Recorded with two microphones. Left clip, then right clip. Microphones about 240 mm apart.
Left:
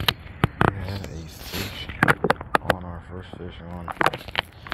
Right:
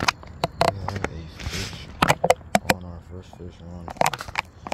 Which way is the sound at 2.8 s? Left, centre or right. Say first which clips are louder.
Left 4 dB; centre.